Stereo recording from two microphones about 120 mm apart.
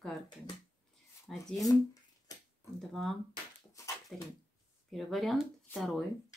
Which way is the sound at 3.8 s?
25° left (ahead or behind).